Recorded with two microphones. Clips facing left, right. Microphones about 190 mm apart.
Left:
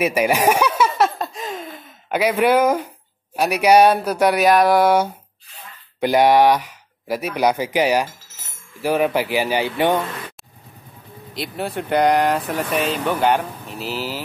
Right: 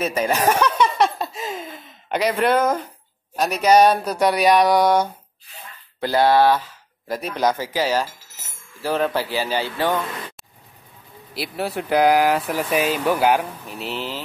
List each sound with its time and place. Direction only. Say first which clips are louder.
0.0 s chuckle: left 3 dB; 10° left (ahead or behind)
3.3 s speech: left 2 dB; 10° left (ahead or behind)
5.9 s speech: left 2 dB; 15° left (ahead or behind)
11.3 s speech: even; 5° right (ahead or behind)